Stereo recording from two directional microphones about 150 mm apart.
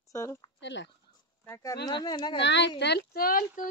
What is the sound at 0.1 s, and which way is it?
Speech, 20° left (ahead or behind).